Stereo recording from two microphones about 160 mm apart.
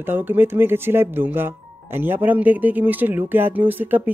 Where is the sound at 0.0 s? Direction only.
10° right (ahead or behind).